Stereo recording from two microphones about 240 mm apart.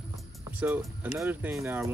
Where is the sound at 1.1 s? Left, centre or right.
Centre.